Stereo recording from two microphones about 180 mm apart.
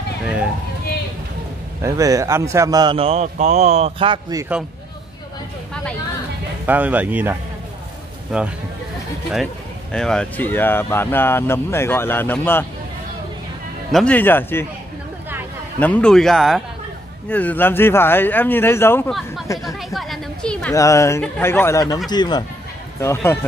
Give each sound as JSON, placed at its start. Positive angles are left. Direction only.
{"t": 1.8, "sound": "speech", "side_deg": -15}
{"t": 6.6, "sound": "speech", "side_deg": -10}
{"t": 9.9, "sound": "speech", "side_deg": 5}
{"t": 13.9, "sound": "speech", "side_deg": 10}
{"t": 15.8, "sound": "speech", "side_deg": 5}
{"t": 19.0, "sound": "speech", "side_deg": 0}
{"t": 20.7, "sound": "speech", "side_deg": 15}